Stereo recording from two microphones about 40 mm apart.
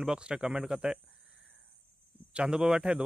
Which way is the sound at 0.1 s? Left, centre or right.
Right.